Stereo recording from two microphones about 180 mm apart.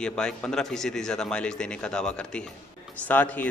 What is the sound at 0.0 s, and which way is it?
A man's voice, 5° left (ahead or behind).